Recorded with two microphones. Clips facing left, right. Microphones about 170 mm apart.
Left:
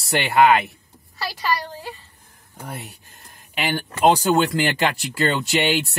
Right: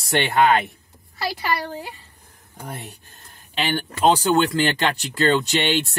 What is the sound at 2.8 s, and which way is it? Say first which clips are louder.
Speech: right 1 dB; 10° left (ahead or behind).